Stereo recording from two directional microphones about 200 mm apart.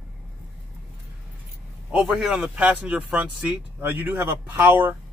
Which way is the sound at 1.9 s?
5° right (ahead or behind).